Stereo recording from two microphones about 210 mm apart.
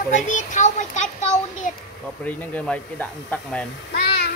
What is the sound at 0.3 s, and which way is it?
A child's voice, 35° left (ahead or behind).